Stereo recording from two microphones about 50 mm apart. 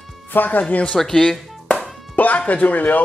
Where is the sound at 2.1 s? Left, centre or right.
Left.